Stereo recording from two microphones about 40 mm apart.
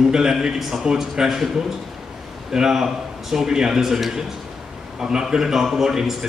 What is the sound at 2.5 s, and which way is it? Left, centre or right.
A man's voice, centre.